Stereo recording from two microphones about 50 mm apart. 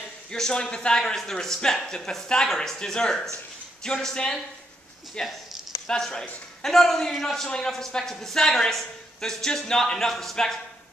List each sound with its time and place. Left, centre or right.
0.3 s a woman's voice: centre